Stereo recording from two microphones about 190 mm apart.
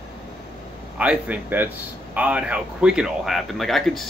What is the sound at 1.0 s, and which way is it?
Speech, 5° right (ahead or behind).